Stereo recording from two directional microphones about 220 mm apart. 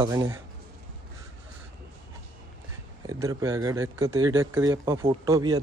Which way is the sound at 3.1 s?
15° right (ahead or behind).